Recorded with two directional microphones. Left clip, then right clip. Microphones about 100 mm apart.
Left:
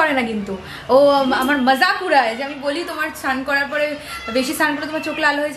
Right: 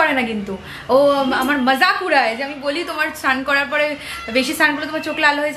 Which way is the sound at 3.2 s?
10° right (ahead or behind).